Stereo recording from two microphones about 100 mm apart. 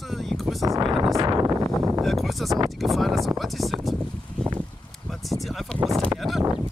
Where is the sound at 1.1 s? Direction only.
40° right (ahead or behind).